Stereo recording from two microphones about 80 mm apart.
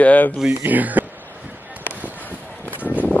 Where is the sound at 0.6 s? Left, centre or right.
Right.